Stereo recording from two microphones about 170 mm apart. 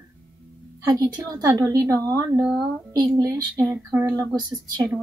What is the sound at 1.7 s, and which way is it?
A woman's voice, 20° right (ahead or behind).